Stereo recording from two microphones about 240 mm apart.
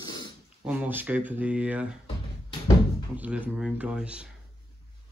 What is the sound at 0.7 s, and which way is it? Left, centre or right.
Speech, centre.